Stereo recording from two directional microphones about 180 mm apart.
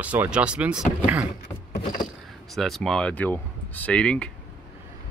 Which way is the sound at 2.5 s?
Centre (ahead or behind).